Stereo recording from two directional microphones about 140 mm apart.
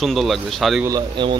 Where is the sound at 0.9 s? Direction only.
35° right (ahead or behind).